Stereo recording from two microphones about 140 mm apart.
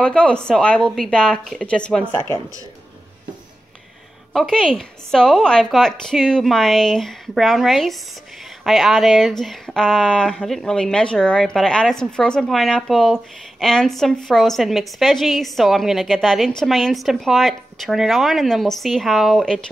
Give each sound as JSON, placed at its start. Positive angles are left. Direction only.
{"t": 0.0, "sound": "speech", "side_deg": 5}
{"t": 4.3, "sound": "speech", "side_deg": 0}